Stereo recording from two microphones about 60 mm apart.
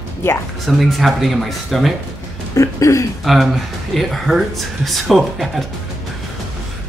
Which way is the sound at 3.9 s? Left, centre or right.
Centre.